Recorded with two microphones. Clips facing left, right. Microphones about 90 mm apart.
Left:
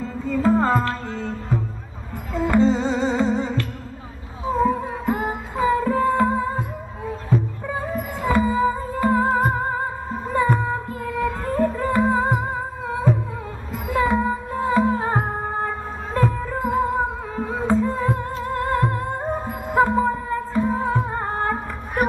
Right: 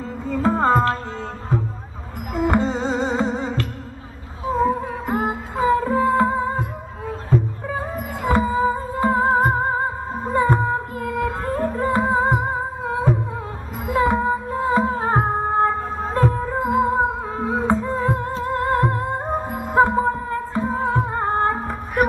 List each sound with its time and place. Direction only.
0.3 s music: 25° right (ahead or behind)
5.1 s music: 30° right (ahead or behind)
8.2 s music: 30° right (ahead or behind)
16.5 s music: 25° right (ahead or behind)
21.3 s music: 35° right (ahead or behind)